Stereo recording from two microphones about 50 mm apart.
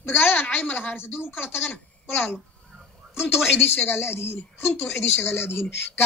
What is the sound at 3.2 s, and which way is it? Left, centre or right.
A woman's voice, left.